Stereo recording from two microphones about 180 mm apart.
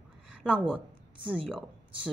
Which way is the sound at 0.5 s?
10° right (ahead or behind).